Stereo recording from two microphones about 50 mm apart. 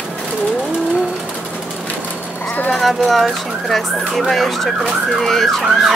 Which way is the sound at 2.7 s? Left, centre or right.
Centre.